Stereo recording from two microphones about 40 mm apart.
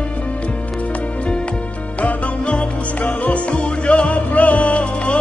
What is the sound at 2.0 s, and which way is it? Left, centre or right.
Music, left.